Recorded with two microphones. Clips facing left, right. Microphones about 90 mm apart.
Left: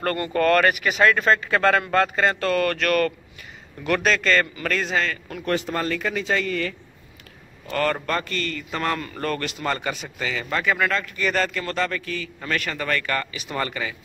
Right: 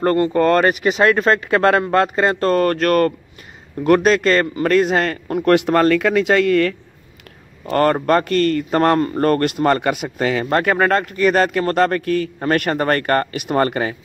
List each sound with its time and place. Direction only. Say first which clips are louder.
0.0 s a man's voice: right 7 dB; 25° right (ahead or behind); by 5.5 s 50° right (ahead or behind)
5.5 s speech: right 11 dB; 65° right (ahead or behind)
7.6 s a man's voice: right 8 dB; 50° right (ahead or behind)